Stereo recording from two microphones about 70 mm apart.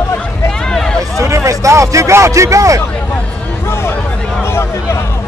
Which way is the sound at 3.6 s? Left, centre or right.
Left.